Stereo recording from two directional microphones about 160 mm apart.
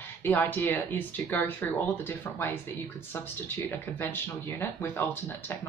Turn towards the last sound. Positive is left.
turn(degrees=15)  # may be behind; listen again after turning